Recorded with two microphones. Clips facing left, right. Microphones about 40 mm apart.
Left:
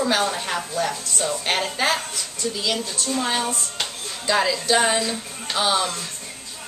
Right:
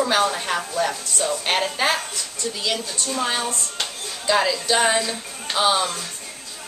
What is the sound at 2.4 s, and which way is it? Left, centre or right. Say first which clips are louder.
Speech: left 2 dB; centre.